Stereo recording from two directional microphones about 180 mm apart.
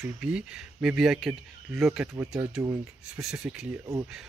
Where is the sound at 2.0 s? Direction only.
15° right (ahead or behind).